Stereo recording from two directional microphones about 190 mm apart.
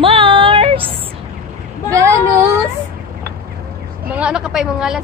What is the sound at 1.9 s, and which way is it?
Speech, 15° right (ahead or behind).